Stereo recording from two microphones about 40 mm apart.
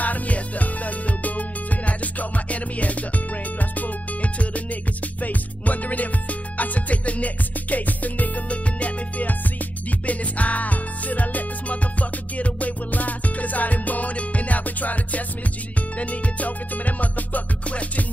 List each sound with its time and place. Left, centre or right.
0.0 s music: left
5.2 s music: left